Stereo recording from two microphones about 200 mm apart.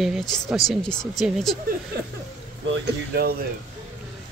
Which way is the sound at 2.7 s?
50° right (ahead or behind).